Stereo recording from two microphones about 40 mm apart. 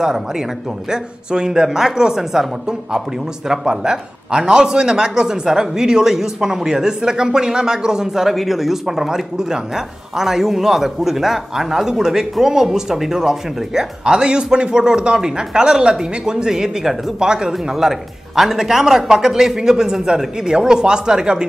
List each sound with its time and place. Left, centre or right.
0.0 s speech: centre
3.4 s speech: centre
14.0 s a man's voice: right